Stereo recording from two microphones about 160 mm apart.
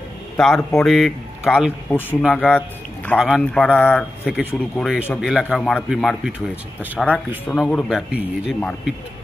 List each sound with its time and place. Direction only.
0.6 s a man's voice: 15° left (ahead or behind)
0.8 s speech: centre (ahead or behind)
1.9 s a man's voice: 10° left (ahead or behind)